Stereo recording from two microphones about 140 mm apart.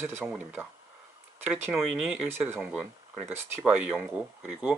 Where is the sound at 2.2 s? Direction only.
15° right (ahead or behind).